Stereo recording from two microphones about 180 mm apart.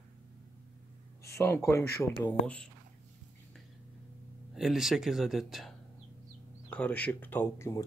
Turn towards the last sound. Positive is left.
turn(degrees=15)  # may be behind; listen again after turning